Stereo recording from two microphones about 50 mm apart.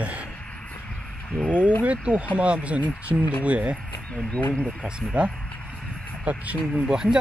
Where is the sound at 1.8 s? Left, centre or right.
Right.